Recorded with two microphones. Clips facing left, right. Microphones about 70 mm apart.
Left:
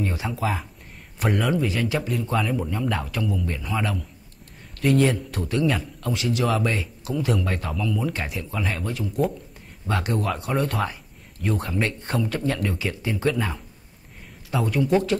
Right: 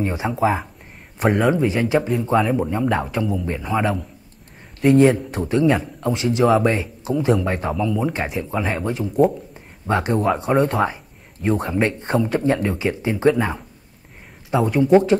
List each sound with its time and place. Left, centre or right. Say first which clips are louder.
0.0 s a man's voice: right 6 dB; right